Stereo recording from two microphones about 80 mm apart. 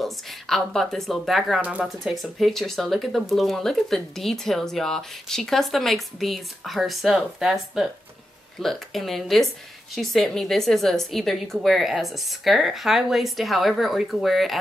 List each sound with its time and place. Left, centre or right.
0.0 s speech: centre
1.6 s speech: centre
2.0 s speech: centre